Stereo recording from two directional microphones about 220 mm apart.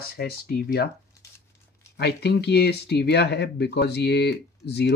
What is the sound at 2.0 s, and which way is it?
Speech, 50° left (ahead or behind).